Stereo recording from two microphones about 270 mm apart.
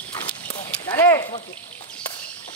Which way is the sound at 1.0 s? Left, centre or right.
Centre.